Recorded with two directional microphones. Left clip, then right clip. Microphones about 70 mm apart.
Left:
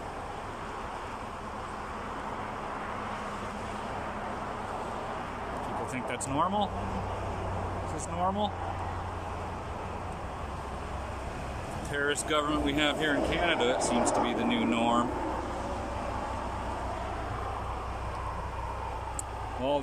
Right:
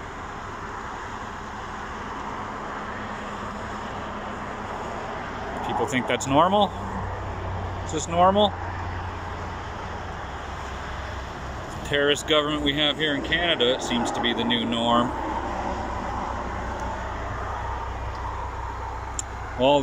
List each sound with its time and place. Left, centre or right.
5.9 s speech: centre
8.2 s speech: centre
11.9 s speech: centre
12.4 s speech: centre
19.6 s speech: centre